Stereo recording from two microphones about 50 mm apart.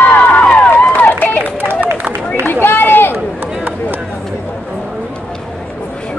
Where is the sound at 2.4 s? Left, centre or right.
Left.